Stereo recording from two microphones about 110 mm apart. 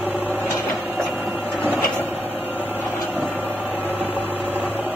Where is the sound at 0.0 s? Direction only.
15° right (ahead or behind).